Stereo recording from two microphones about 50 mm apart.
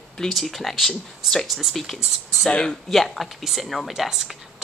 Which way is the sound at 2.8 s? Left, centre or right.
Centre.